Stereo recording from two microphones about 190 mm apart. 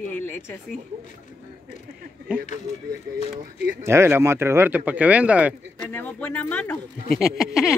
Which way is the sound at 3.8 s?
15° right (ahead or behind).